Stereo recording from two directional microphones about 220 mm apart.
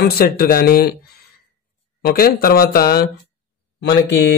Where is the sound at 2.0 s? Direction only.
40° left (ahead or behind).